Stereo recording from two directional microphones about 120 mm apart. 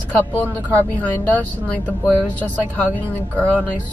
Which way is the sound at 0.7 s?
15° left (ahead or behind).